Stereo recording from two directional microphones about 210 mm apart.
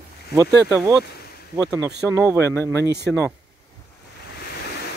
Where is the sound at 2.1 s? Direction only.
10° right (ahead or behind).